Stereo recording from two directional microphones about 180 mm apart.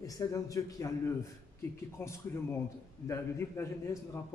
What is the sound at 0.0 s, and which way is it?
A man's voice, 20° left (ahead or behind).